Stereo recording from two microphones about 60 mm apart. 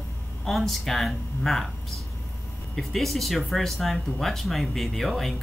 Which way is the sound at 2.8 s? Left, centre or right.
Centre.